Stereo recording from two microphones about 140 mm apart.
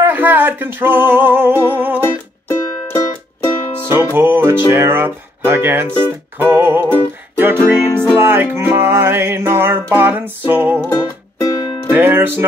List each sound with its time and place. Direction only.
0.0 s music: 15° right (ahead or behind)
2.0 s music: 15° left (ahead or behind)
4.1 s music: 15° right (ahead or behind)
7.5 s music: 20° left (ahead or behind)
8.2 s music: 15° right (ahead or behind)
10.9 s music: 25° left (ahead or behind)
11.9 s music: 15° right (ahead or behind)